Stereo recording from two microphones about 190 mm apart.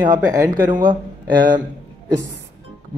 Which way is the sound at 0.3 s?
20° right (ahead or behind).